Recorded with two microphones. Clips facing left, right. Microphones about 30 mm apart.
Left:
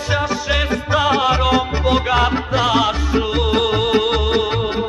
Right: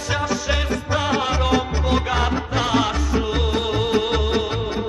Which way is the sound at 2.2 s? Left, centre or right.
Left.